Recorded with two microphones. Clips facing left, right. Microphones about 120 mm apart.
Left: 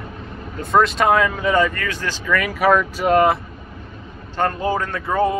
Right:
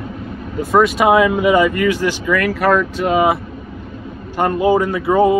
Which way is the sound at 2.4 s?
5° left (ahead or behind).